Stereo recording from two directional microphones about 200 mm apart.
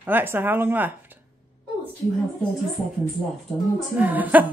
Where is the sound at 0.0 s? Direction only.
10° right (ahead or behind).